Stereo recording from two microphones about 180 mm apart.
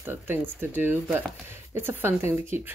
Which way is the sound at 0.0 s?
10° right (ahead or behind).